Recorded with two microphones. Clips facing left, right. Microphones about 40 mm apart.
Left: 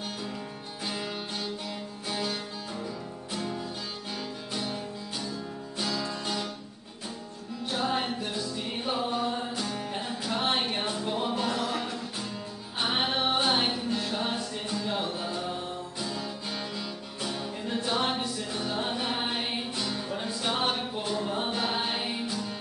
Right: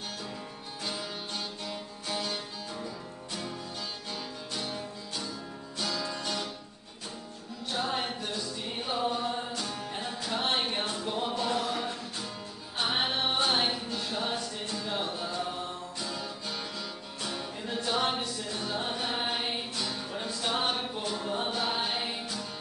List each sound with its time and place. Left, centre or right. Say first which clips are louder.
0.8 s music: left 3 dB; centre
4.1 s music: left 5 dB; centre
7.7 s music: left 3 dB; centre
11.5 s music: left 1 dB; left
12.7 s music: left 2 dB; centre
17.7 s a capella: left 1 dB; left
18.0 s music: left 1 dB; centre
20.9 s a sound: left 2 dB; centre
21.6 s music: left 1 dB; centre